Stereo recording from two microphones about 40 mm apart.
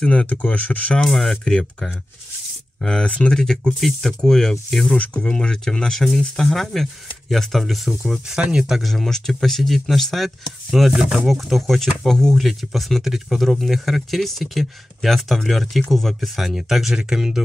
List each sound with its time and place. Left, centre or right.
0.0 s speech: left
1.0 s speech: centre
2.8 s speech: centre
4.9 s speech: left
5.2 s speech: centre
8.4 s speech: right
8.6 s speech: centre
8.9 s speech: centre
12.4 s speech: centre
16.5 s speech: centre